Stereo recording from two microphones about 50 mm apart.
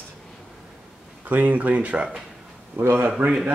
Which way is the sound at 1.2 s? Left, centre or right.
Right.